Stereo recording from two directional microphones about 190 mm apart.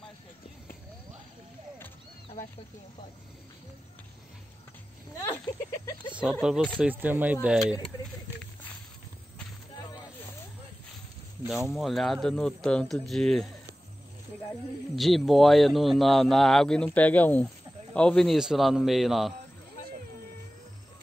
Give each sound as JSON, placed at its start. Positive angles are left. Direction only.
{"t": 6.4, "sound": "speech", "side_deg": 0}
{"t": 11.4, "sound": "speech", "side_deg": 0}
{"t": 15.0, "sound": "speech", "side_deg": 0}